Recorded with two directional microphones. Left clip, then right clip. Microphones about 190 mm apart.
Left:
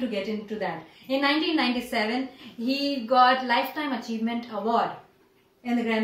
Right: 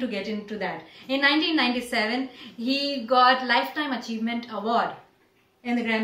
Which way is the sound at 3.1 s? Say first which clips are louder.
Right 1 dB; 5° left (ahead or behind).